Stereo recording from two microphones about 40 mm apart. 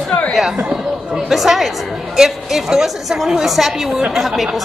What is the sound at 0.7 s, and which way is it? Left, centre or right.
Speech, centre.